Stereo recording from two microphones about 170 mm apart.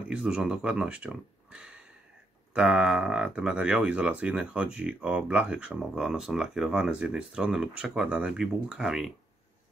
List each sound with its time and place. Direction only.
0.1 s speech: 5° right (ahead or behind)